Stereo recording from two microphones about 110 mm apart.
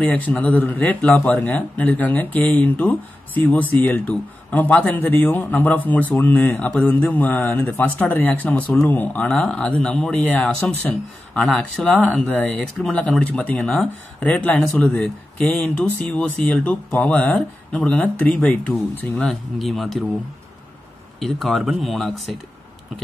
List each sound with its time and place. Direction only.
0.0 s speech: 15° left (ahead or behind)
21.2 s speech: centre (ahead or behind)